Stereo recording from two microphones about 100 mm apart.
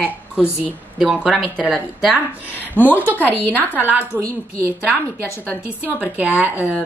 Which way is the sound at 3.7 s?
15° right (ahead or behind).